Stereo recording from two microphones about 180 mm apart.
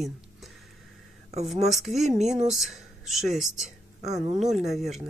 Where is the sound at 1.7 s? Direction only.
Centre (ahead or behind).